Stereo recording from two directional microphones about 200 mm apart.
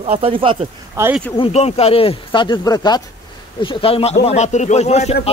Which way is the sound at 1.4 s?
30° left (ahead or behind).